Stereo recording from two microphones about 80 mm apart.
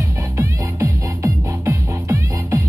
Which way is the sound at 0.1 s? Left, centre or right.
Right.